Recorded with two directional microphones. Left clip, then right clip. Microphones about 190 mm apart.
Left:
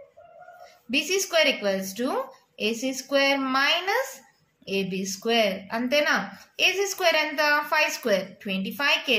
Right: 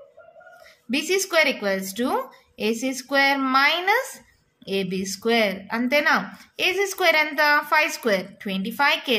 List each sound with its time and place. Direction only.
0.8 s speech: 35° right (ahead or behind)